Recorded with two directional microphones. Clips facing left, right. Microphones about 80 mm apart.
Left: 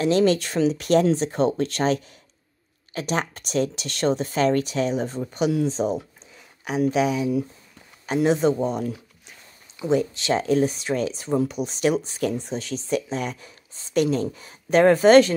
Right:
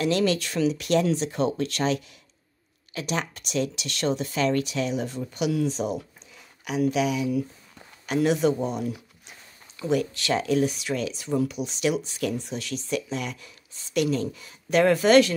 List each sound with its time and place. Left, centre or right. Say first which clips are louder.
0.0 s speech: left 4 dB; left